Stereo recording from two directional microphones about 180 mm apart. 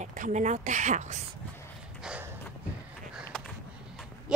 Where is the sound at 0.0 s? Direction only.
45° right (ahead or behind).